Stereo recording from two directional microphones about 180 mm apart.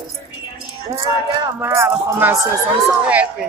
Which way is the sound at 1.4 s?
15° right (ahead or behind).